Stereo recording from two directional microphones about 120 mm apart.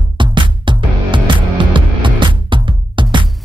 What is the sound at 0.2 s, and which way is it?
Music, 40° right (ahead or behind).